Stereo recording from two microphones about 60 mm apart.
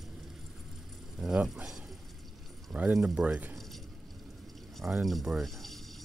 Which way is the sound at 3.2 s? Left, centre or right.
Centre.